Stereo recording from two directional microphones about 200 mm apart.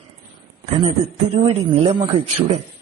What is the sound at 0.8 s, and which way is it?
A man's voice, 30° right (ahead or behind).